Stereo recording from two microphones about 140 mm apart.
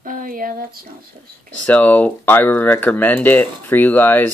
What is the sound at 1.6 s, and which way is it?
Speech, 10° left (ahead or behind).